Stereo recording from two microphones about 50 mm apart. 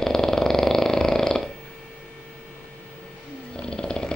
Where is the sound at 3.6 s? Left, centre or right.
Centre.